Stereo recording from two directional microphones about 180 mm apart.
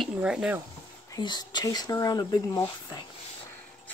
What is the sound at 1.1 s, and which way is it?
Speech, 25° left (ahead or behind).